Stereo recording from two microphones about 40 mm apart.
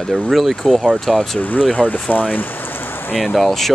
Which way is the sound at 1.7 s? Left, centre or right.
Left.